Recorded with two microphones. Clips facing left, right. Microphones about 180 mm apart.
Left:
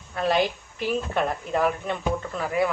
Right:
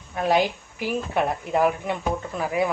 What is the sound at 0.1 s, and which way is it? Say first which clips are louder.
Speech: right 1 dB; 15° right (ahead or behind).